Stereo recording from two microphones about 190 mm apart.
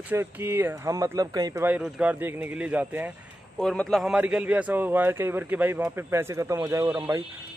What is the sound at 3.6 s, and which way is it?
A man's voice, 5° left (ahead or behind).